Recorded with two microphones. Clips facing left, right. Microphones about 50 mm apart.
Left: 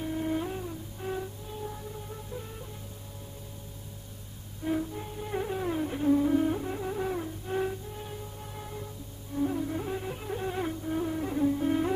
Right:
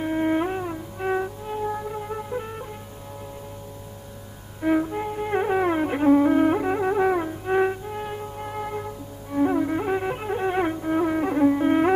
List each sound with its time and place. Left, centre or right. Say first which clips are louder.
0.0 s music: right 8 dB; right
4.6 s music: right 9 dB; right